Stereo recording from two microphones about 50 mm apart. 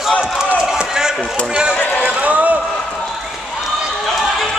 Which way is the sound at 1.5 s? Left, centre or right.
Centre.